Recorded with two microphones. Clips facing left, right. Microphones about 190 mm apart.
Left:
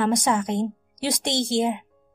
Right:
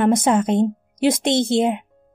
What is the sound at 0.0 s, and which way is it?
A woman's voice, 25° right (ahead or behind).